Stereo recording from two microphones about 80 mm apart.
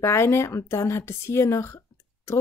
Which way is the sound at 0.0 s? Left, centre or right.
Left.